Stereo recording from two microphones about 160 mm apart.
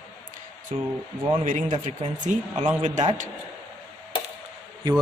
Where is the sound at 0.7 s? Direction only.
45° right (ahead or behind).